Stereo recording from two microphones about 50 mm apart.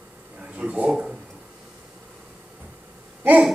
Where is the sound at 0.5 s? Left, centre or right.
Right.